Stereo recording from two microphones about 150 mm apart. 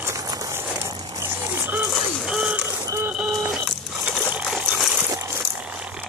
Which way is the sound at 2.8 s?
20° right (ahead or behind).